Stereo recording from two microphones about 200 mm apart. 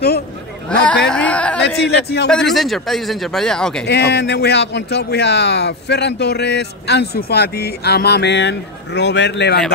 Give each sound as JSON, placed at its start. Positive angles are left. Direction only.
{"t": 0.7, "sound": "a sound", "side_deg": 5}
{"t": 1.8, "sound": "speech", "side_deg": 55}
{"t": 2.2, "sound": "speech", "side_deg": 0}
{"t": 3.8, "sound": "speech", "side_deg": 55}